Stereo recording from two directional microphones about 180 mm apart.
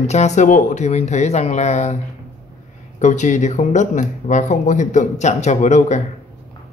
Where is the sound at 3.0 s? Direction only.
40° left (ahead or behind).